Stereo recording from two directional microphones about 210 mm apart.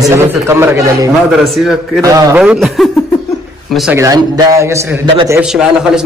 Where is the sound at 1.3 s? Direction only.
Centre (ahead or behind).